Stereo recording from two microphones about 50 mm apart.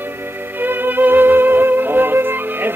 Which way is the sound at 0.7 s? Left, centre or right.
Right.